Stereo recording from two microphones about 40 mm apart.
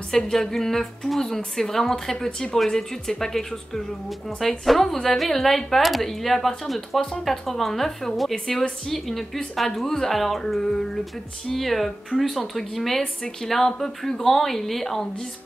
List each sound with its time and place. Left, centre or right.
0.1 s a woman's voice: centre
13.0 s a woman's voice: centre
13.5 s a woman's voice: centre